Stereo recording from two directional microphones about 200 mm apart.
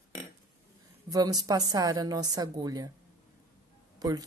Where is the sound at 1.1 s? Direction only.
20° right (ahead or behind).